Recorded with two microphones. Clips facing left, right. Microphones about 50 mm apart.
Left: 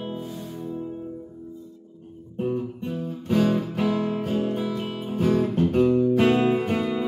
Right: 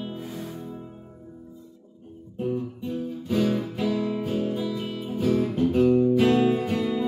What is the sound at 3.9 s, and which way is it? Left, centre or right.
Music, left.